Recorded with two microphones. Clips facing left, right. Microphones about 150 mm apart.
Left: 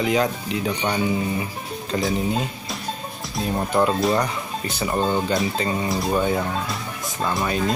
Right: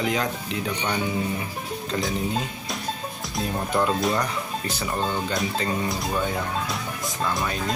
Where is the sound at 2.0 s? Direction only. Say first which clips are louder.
Left 4 dB; centre (ahead or behind).